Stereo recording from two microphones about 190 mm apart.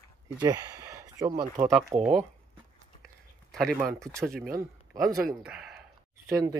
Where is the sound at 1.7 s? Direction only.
Centre (ahead or behind).